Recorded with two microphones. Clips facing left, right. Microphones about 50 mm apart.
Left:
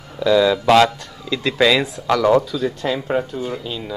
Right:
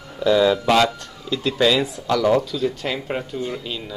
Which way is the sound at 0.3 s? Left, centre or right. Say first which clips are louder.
Left 1 dB; centre.